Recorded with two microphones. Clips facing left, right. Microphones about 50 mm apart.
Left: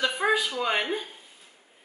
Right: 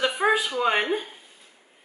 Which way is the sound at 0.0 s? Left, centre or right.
Centre.